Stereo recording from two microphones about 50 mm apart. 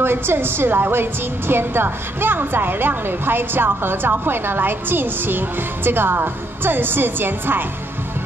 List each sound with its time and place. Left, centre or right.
0.0 s a woman's voice: right